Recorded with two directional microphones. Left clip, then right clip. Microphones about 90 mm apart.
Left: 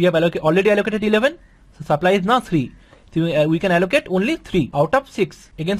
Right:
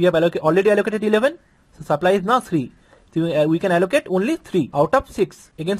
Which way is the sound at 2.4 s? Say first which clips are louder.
Left 1 dB; 15° right (ahead or behind).